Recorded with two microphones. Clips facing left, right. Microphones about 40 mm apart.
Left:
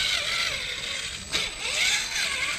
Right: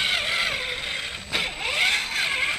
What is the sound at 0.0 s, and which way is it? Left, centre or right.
Vehicle, centre.